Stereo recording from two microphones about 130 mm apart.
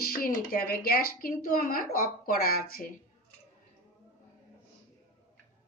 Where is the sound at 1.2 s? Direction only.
90° left.